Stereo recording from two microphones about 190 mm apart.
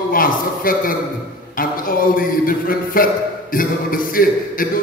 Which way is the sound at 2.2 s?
50° left (ahead or behind).